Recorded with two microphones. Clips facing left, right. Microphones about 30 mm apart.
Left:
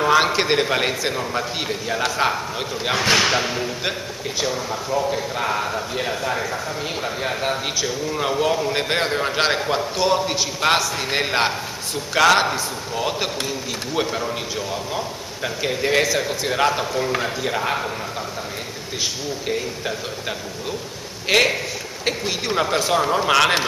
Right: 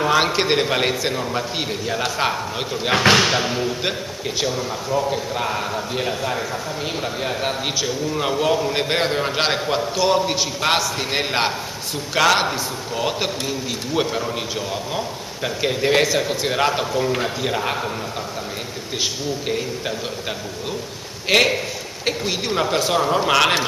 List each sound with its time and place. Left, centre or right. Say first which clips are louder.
0.0 s a man's voice: left 1 dB; centre
3.0 s speech: right 3 dB; right
3.3 s a man's voice: right 1 dB; centre
21.3 s a man's voice: right 1 dB; centre